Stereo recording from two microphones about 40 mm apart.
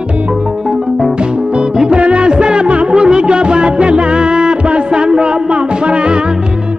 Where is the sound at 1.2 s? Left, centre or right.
Right.